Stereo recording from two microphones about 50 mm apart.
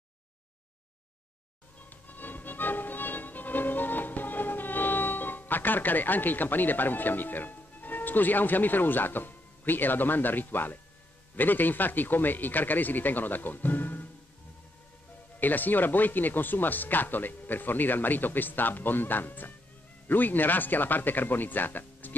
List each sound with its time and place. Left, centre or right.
1.8 s music: left
11.3 s speech: left
15.3 s speech: left